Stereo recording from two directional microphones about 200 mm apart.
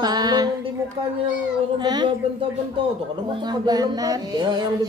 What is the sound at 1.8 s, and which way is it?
Speech, 20° right (ahead or behind).